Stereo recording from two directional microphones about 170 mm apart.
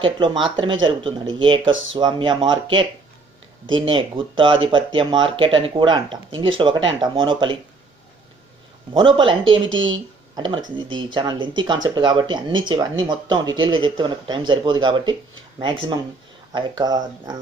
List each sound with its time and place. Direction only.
0.0 s speech: 30° right (ahead or behind)
8.9 s speech: 30° right (ahead or behind)
10.9 s speech: 30° right (ahead or behind)